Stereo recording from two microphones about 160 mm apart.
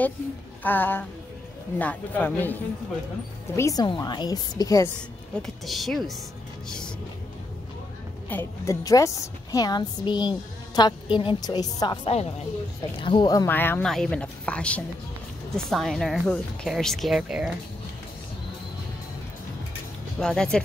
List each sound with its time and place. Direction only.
0.7 s a woman's voice: 10° left (ahead or behind)
5.7 s speech: centre (ahead or behind)
8.3 s a woman's voice: 15° left (ahead or behind)
13.5 s speech: 10° left (ahead or behind); by 17.6 s 5° right (ahead or behind)
20.2 s speech: 5° left (ahead or behind)